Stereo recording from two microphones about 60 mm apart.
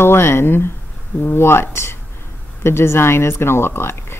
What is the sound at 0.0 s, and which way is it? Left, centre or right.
Speech, left.